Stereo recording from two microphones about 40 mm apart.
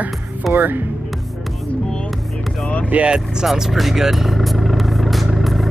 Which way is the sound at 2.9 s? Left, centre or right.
Right.